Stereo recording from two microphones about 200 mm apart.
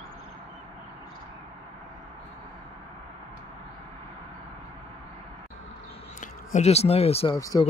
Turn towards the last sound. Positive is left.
turn(degrees=15)  # may be behind; listen again after turning